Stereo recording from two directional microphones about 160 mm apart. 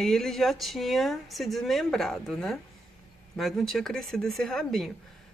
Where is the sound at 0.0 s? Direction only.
Centre (ahead or behind).